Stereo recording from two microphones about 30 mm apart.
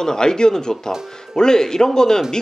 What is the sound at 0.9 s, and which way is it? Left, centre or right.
Speech, centre.